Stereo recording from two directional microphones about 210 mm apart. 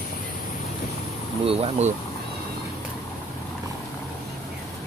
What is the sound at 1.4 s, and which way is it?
Speech, 25° right (ahead or behind).